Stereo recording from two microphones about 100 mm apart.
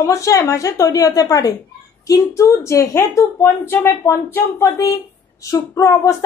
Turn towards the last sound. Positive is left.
turn(degrees=30)  # may be behind; listen again after turning